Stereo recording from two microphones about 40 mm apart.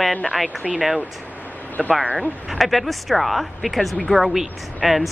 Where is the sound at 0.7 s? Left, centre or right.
Centre.